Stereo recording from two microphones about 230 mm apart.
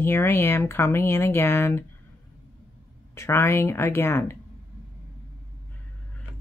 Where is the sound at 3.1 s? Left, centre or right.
Centre.